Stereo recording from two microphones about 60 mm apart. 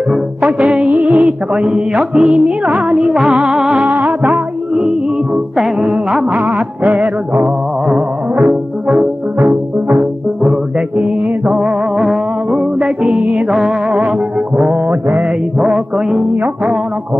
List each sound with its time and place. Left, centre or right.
0.5 s music: right
3.0 s music: centre
3.8 s music: right
5.6 s music: centre
8.5 s music: centre
14.6 s mantra: centre
15.0 s music: right